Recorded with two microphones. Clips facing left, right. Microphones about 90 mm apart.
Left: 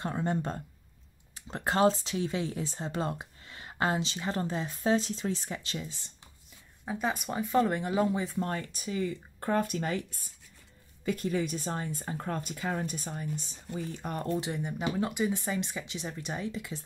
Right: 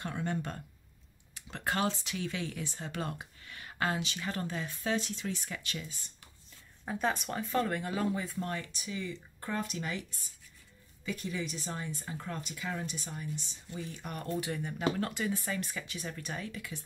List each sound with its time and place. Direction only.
0.0 s speech: 30° left (ahead or behind)
6.8 s speech: 5° left (ahead or behind); by 8.5 s 25° left (ahead or behind)
8.5 s speech: 35° left (ahead or behind)